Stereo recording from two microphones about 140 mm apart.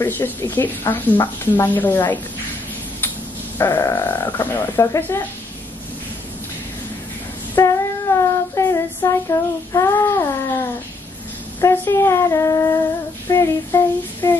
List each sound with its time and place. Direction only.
0.0 s a woman's voice: 15° left (ahead or behind)
3.5 s a woman's voice: 15° left (ahead or behind)
7.5 s child singing: 20° left (ahead or behind)
11.6 s speech: 15° left (ahead or behind)
13.3 s a sound: 20° left (ahead or behind)